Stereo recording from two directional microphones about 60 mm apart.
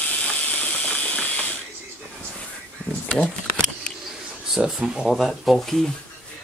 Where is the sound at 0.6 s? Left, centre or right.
Left.